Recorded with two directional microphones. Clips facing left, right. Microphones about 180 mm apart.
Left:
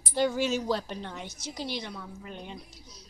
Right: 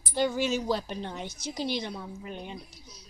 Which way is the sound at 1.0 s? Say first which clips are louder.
Right 3 dB; 20° right (ahead or behind).